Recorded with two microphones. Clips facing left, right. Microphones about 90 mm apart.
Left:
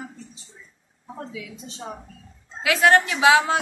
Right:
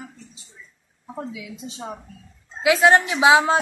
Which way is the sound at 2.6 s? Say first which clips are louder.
Right 2 dB; 20° right (ahead or behind).